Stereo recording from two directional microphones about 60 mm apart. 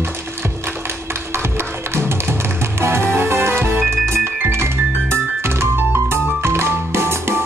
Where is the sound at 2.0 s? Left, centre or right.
Right.